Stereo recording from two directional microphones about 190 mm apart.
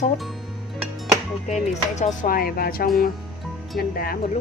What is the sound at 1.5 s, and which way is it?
Speech, 40° left (ahead or behind).